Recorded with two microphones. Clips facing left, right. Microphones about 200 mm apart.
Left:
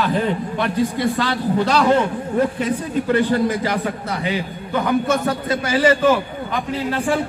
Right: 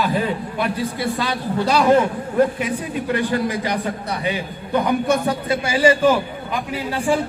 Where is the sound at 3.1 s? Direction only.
15° right (ahead or behind).